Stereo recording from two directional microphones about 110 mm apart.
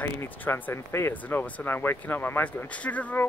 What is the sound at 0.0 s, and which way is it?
Speech, 20° left (ahead or behind).